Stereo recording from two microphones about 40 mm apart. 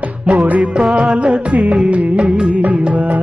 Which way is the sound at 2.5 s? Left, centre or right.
Right.